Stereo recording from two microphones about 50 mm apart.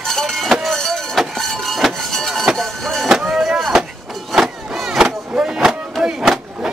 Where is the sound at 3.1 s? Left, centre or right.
Centre.